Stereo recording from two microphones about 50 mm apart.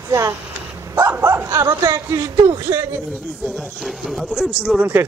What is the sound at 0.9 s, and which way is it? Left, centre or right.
Speech, right.